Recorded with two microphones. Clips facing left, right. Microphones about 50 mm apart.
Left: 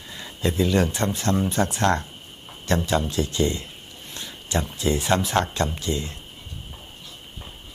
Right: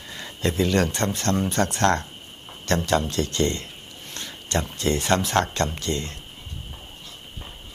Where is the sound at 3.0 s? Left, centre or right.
Right.